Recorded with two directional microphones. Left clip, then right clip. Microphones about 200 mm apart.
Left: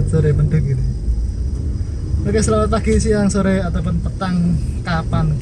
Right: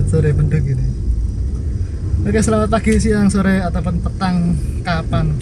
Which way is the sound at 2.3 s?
25° right (ahead or behind).